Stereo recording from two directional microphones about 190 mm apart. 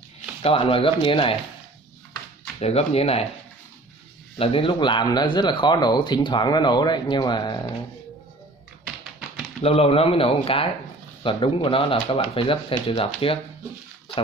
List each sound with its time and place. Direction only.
0.4 s speech: 30° left (ahead or behind)
2.6 s speech: 30° left (ahead or behind)
4.4 s speech: 30° left (ahead or behind)
9.6 s speech: 30° left (ahead or behind)